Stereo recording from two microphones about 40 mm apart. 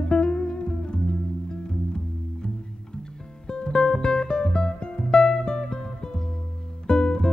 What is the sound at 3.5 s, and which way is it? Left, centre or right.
Music, left.